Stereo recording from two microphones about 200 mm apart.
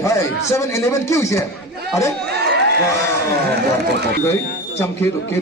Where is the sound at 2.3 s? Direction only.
55° right (ahead or behind).